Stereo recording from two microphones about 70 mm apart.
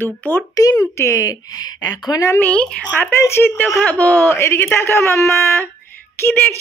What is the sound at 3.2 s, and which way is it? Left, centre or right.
Speech, left.